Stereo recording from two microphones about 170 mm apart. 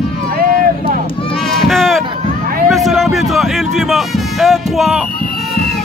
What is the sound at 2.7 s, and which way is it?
Speech, centre (ahead or behind).